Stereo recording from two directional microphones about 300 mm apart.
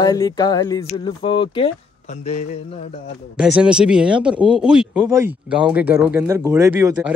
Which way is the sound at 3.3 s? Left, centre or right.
Centre.